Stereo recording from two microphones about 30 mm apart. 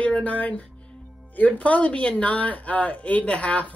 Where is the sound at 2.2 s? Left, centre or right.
Left.